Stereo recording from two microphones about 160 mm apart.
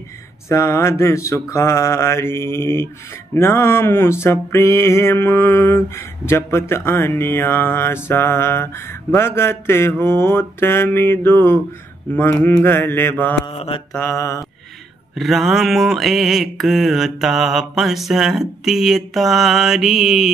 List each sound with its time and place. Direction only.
0.5 s mantra: 20° left (ahead or behind)
13.5 s mantra: 35° left (ahead or behind)
13.9 s mantra: 15° left (ahead or behind)
15.1 s mantra: centre (ahead or behind)